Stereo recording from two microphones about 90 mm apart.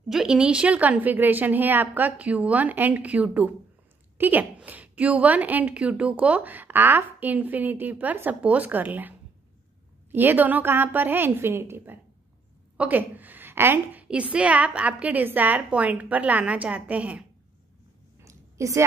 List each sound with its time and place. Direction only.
0.1 s a woman's voice: 5° right (ahead or behind)
10.1 s a woman's voice: 20° right (ahead or behind)
14.0 s a woman's voice: 15° right (ahead or behind)
18.2 s a sound: 35° right (ahead or behind)